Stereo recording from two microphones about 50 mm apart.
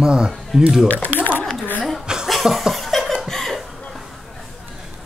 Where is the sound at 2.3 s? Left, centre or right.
Centre.